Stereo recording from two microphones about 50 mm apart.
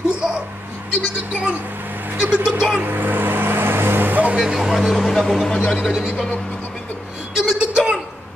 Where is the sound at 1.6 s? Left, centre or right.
Right.